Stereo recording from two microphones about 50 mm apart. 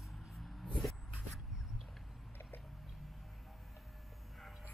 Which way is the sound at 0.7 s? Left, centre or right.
Centre.